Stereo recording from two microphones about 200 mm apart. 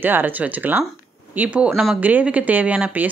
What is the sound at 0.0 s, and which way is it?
Speech, 10° right (ahead or behind).